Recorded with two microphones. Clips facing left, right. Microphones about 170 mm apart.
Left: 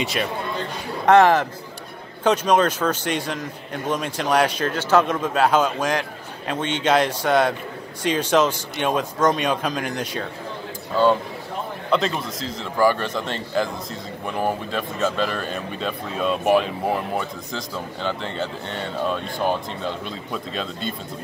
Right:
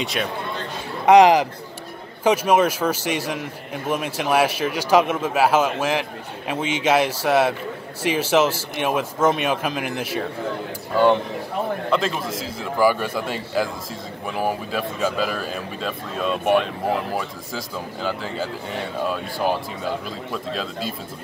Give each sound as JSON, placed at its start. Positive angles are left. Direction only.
{"t": 0.0, "sound": "speech", "side_deg": 0}
{"t": 1.0, "sound": "a man's voice", "side_deg": -15}
{"t": 11.9, "sound": "a man's voice", "side_deg": 0}